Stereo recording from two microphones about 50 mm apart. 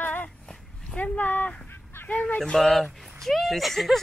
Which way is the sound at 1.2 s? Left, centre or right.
Left.